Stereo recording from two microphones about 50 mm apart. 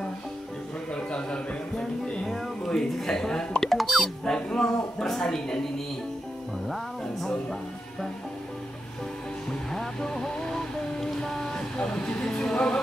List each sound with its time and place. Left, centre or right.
0.9 s a sound: centre
2.2 s music: centre
3.7 s speech: centre
4.3 s speech: centre
9.5 s music: centre